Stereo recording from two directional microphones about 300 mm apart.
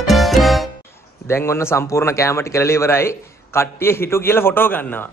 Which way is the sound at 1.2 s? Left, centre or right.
Centre.